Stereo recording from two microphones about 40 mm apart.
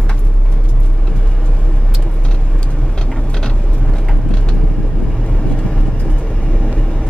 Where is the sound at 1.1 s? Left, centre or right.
Left.